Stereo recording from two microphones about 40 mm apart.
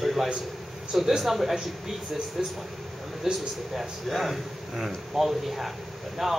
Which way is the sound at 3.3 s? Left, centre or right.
Centre.